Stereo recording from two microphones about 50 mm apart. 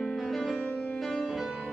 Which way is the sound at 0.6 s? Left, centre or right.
Left.